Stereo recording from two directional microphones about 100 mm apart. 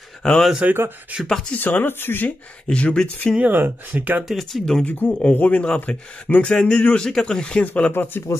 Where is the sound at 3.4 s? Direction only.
20° right (ahead or behind).